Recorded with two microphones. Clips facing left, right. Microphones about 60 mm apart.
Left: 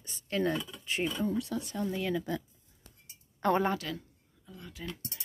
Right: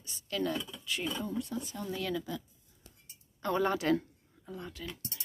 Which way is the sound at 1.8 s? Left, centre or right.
Left.